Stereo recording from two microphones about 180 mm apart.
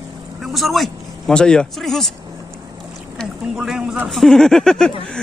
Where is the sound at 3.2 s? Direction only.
5° right (ahead or behind).